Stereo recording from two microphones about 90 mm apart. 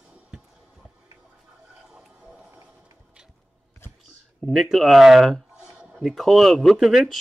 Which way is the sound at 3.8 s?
25° left (ahead or behind).